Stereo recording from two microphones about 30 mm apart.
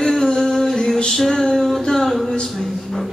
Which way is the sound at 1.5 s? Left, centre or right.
Centre.